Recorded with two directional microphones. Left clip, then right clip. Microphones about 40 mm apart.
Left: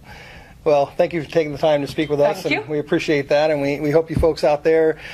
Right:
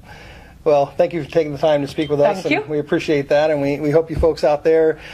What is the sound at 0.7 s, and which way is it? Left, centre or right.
Speech, left.